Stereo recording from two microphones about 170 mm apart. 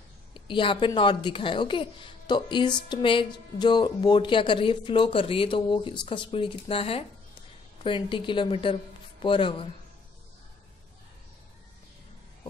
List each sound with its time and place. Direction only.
0.3 s a woman's voice: 30° left (ahead or behind)